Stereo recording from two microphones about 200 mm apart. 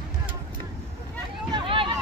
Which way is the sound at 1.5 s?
25° right (ahead or behind).